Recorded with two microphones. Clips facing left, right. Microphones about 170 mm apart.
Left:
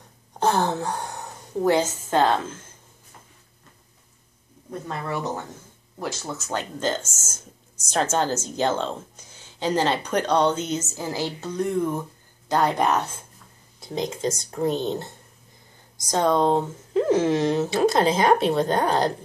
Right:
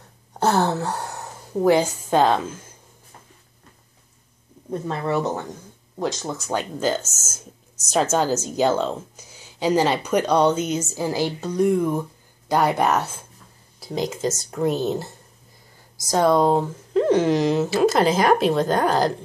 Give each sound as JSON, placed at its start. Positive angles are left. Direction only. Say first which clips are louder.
{"t": 0.4, "sound": "speech", "louder": "right 2 dB", "side_deg": -10}
{"t": 4.6, "sound": "speech", "louder": "right 6 dB", "side_deg": -25}
{"t": 5.9, "sound": "speech", "louder": "right 5 dB", "side_deg": -15}
{"t": 7.1, "sound": "speech", "louder": "right 2 dB", "side_deg": 10}
{"t": 7.9, "sound": "speech", "louder": "right 3 dB", "side_deg": -10}
{"t": 16.2, "sound": "speech", "louder": "right 3 dB", "side_deg": -10}